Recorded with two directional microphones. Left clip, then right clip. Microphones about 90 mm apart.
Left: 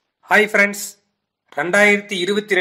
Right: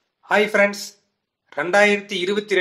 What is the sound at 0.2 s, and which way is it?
A man's voice, 25° left (ahead or behind).